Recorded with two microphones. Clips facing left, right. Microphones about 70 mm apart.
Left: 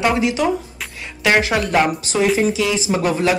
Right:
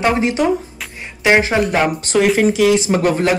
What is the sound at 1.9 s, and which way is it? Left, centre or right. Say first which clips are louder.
Speech: right 3 dB; right.